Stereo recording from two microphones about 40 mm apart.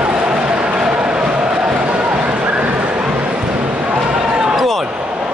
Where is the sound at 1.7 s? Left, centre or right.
Right.